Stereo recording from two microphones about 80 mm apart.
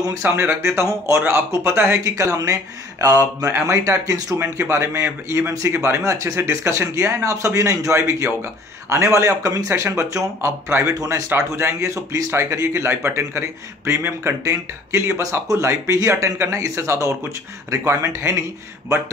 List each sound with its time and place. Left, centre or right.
0.4 s a man's voice: right
2.1 s a man's voice: right
4.4 s a man's voice: right
10.7 s a man's voice: right
11.0 s a man's voice: right